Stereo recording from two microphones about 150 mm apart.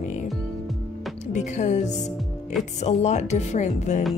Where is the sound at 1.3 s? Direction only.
50° left (ahead or behind).